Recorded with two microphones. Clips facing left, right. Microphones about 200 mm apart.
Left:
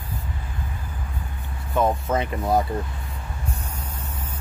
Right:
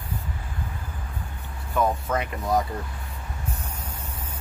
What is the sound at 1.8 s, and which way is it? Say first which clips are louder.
Speech: left 3 dB; 25° left (ahead or behind).